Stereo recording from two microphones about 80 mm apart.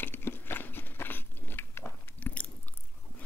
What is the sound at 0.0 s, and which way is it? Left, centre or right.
Biting, left.